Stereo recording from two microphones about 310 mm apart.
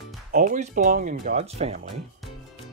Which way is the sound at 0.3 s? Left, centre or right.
Right.